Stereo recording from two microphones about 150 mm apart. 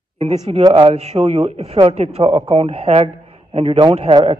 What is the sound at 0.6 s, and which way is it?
A man's voice, 35° right (ahead or behind).